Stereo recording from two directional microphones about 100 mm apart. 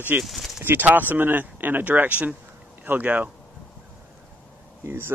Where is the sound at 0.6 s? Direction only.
20° right (ahead or behind).